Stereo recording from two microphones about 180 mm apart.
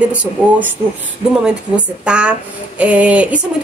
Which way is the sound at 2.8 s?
10° right (ahead or behind).